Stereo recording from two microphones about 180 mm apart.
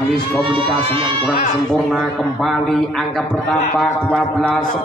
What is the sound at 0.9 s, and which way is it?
Speech, 25° right (ahead or behind).